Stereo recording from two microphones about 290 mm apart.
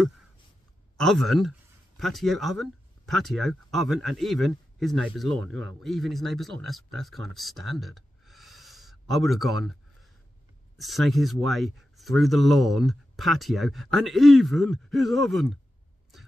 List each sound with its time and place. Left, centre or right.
0.9 s speech: centre
10.8 s speech: centre